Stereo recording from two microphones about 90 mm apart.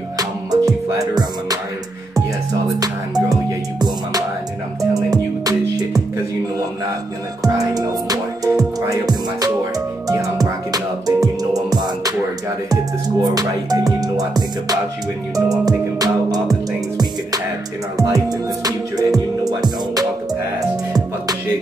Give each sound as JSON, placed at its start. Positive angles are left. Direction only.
{"t": 0.2, "sound": "music", "side_deg": -45}
{"t": 2.8, "sound": "music", "side_deg": -45}
{"t": 7.4, "sound": "music", "side_deg": -40}
{"t": 13.2, "sound": "music", "side_deg": -45}
{"t": 17.9, "sound": "music", "side_deg": -45}